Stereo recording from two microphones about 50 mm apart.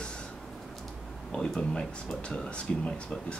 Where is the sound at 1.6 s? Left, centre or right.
Centre.